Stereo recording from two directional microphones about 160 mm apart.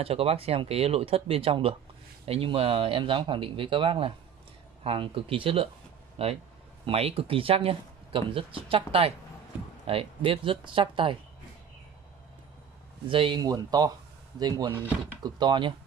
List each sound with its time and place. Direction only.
0.0 s speech: 40° right (ahead or behind)
13.1 s speech: 30° right (ahead or behind)
15.2 s speech: 25° right (ahead or behind)